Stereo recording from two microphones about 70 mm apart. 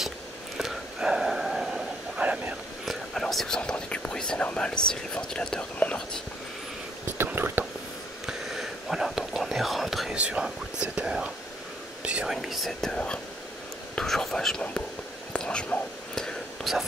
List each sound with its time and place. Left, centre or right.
0.6 s a sound: centre
2.2 s vehicle: centre
2.8 s whispering: centre
4.5 s speech: centre
7.3 s whispering: right
8.3 s whispering: centre
10.1 s whispering: centre
12.9 s whispering: centre
16.7 s whispering: centre